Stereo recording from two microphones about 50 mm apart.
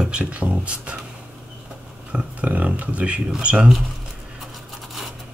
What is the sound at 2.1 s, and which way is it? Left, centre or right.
Speech, right.